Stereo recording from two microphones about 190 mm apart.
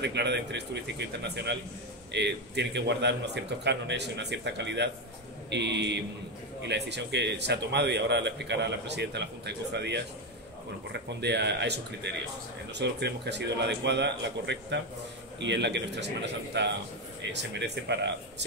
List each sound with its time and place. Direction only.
0.0 s a man's voice: 65° right (ahead or behind)